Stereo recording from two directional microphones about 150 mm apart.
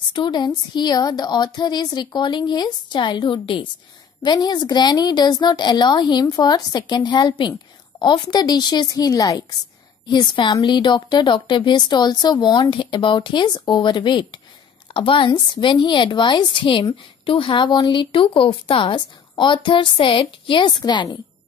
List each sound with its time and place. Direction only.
0.1 s a woman's voice: 30° left (ahead or behind)